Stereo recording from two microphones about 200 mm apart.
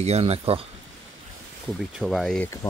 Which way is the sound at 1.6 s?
Centre (ahead or behind).